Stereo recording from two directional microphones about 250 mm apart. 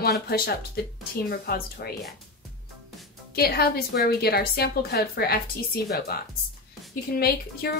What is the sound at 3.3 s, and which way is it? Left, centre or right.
Speech, left.